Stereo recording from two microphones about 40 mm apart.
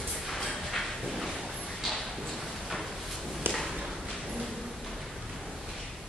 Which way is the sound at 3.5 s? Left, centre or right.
Right.